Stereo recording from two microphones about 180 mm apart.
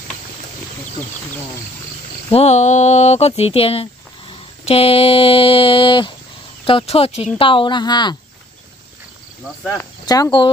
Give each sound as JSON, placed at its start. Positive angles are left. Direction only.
{"t": 2.3, "sound": "speech", "side_deg": 40}
{"t": 9.6, "sound": "speech", "side_deg": 10}
{"t": 10.0, "sound": "speech", "side_deg": 20}